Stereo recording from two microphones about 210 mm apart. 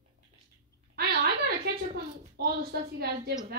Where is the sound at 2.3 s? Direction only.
50° right (ahead or behind).